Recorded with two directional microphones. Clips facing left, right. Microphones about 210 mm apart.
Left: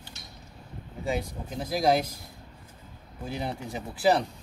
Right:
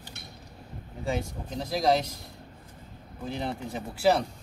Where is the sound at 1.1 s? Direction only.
5° left (ahead or behind).